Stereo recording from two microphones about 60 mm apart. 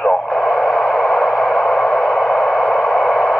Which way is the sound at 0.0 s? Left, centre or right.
Centre.